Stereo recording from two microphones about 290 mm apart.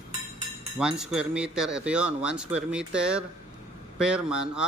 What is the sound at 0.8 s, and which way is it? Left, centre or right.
Speech, centre.